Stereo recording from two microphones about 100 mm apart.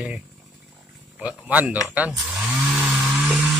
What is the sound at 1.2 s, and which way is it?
Speech, 15° right (ahead or behind).